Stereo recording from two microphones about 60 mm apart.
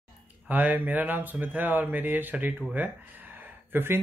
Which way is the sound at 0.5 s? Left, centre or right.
Right.